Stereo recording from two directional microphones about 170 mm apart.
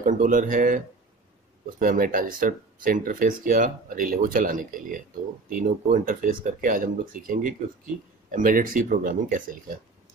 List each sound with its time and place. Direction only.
0.0 s speech: 50° right (ahead or behind)